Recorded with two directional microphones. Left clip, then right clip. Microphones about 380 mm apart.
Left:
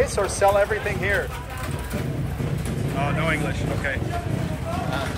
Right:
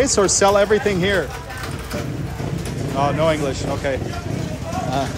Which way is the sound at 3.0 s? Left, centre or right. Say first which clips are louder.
Right 7 dB; centre.